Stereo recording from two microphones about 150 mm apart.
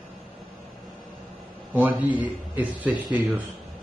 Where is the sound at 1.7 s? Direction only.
10° right (ahead or behind).